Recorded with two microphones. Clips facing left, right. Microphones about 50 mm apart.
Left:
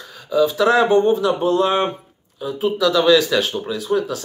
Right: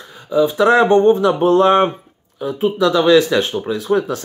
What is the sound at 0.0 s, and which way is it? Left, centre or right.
Speech, right.